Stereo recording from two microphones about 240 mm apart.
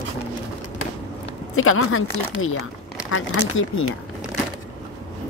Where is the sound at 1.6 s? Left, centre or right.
Left.